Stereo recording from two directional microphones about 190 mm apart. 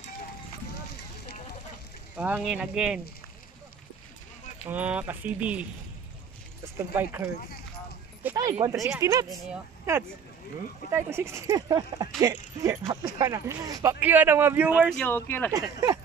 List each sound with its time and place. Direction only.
2.1 s speech: 10° right (ahead or behind)
4.6 s speech: 10° right (ahead or behind)
6.9 s speech: 10° right (ahead or behind)
8.4 s speech: 20° right (ahead or behind)
14.9 s speech: 10° left (ahead or behind)
15.5 s speech: 20° right (ahead or behind)